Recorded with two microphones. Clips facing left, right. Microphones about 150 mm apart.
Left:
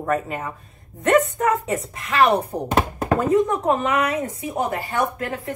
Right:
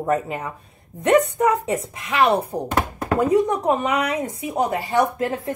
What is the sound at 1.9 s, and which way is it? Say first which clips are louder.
A woman's voice: left 1 dB; 10° right (ahead or behind).